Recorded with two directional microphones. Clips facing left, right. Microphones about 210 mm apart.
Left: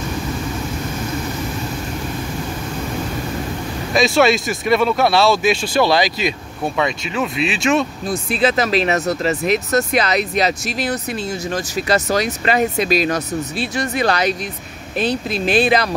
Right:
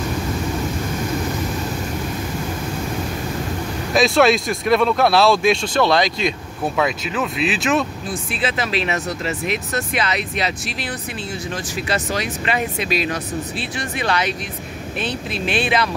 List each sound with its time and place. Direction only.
3.9 s speech: centre (ahead or behind)
8.1 s speech: 40° left (ahead or behind)